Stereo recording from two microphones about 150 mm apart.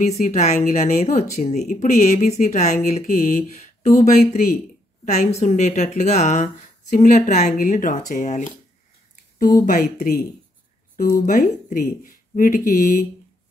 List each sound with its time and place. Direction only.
0.0 s speech: 50° left (ahead or behind)